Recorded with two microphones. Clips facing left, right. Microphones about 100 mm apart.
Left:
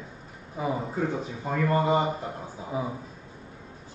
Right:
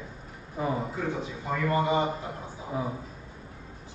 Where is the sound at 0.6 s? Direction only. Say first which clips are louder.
Even; 5° left (ahead or behind).